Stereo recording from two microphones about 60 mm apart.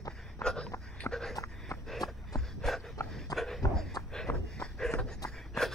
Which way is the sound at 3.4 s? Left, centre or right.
Centre.